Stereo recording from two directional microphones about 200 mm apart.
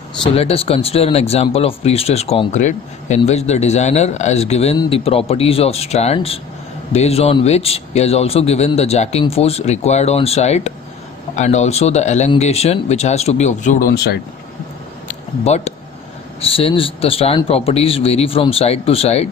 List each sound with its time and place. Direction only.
0.2 s a man's voice: 30° left (ahead or behind)
13.9 s speech: 55° left (ahead or behind)
15.0 s a sound: 35° left (ahead or behind)
16.3 s a man's voice: 30° left (ahead or behind)